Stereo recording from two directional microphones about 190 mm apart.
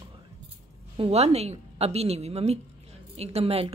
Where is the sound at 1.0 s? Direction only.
35° right (ahead or behind).